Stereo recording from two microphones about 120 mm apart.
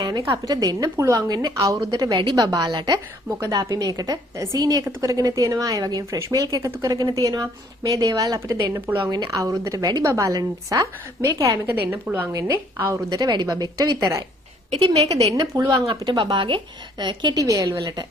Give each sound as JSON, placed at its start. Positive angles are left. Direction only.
{"t": 0.0, "sound": "a woman's voice", "side_deg": -30}
{"t": 3.3, "sound": "speech", "side_deg": -25}
{"t": 8.7, "sound": "speech", "side_deg": -15}
{"t": 9.1, "sound": "speech", "side_deg": -35}
{"t": 12.3, "sound": "a woman's voice", "side_deg": -25}
{"t": 14.8, "sound": "a woman's voice", "side_deg": -60}
{"t": 15.3, "sound": "speech", "side_deg": -25}
{"t": 16.0, "sound": "a woman's voice", "side_deg": -40}